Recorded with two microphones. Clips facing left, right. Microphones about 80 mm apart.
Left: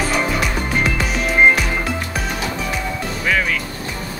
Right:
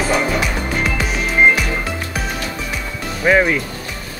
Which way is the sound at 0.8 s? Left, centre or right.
Centre.